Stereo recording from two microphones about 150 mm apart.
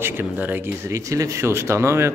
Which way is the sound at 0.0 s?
10° right (ahead or behind).